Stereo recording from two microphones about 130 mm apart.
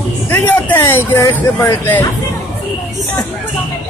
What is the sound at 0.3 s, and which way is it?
Speech, 15° left (ahead or behind).